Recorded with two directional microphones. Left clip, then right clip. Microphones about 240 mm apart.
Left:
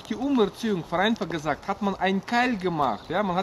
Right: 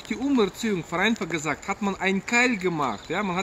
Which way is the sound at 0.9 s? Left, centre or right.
Centre.